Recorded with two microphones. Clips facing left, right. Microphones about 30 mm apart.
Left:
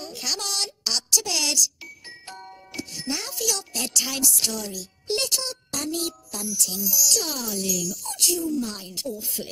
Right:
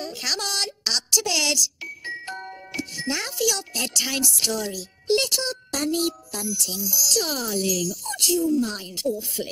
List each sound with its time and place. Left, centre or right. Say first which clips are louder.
0.0 s a sound: right 2 dB; right
3.3 s a child's voice: right 3 dB; centre
9.4 s speech: right 5 dB; right